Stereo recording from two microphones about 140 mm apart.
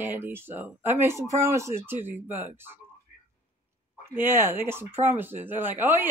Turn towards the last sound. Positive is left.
turn(degrees=-15)  # may be behind; listen again after turning